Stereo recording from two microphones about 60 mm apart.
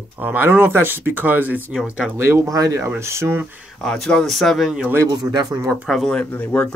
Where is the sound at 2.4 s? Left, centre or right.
Right.